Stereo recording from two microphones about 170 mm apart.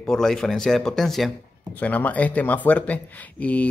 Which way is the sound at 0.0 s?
Centre (ahead or behind).